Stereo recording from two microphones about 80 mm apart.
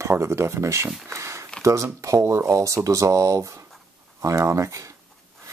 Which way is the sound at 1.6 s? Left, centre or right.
Right.